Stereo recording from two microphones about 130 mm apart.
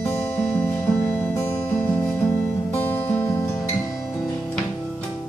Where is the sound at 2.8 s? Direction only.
15° left (ahead or behind).